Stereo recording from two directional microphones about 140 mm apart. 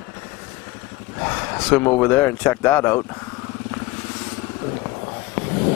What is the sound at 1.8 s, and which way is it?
Speech, 15° left (ahead or behind).